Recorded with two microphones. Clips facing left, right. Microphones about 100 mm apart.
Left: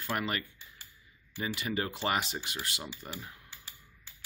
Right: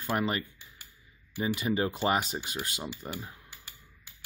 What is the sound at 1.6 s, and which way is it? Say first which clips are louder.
Speech: right 5 dB; 20° right (ahead or behind).